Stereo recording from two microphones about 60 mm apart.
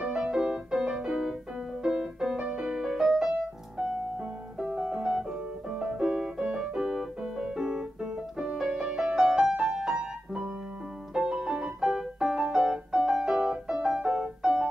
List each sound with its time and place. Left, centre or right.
0.0 s music: centre
4.6 s piano: centre
5.7 s music: centre
6.6 s keyboard: centre
7.4 s piano: centre
11.1 s music: centre